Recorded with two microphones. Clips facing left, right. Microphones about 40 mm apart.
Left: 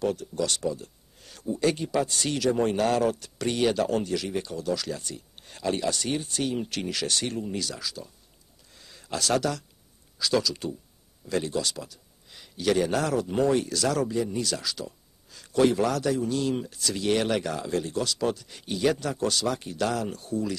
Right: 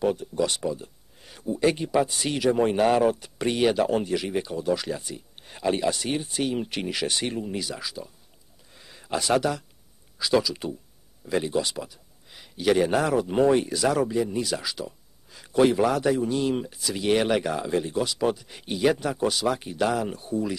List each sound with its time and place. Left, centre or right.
0.0 s a man's voice: centre
8.7 s a sound: centre
10.1 s a man's voice: centre